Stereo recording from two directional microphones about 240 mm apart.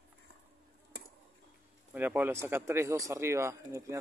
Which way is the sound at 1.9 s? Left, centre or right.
Centre.